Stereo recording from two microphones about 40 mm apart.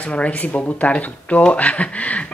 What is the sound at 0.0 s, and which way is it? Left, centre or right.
Speech, left.